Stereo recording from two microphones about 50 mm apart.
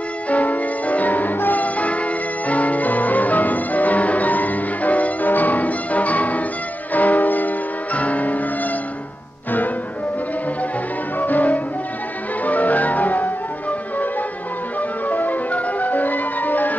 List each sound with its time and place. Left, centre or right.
0.3 s music: left
11.1 s music: left